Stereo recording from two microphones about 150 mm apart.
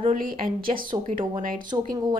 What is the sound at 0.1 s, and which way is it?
Speech, 70° right (ahead or behind).